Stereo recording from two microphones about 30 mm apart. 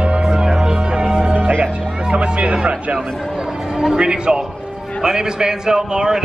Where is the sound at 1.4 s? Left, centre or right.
Right.